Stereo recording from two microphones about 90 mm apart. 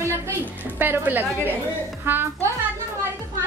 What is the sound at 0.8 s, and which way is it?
Speech, 20° right (ahead or behind).